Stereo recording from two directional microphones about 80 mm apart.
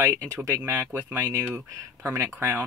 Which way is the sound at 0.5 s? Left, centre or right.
Right.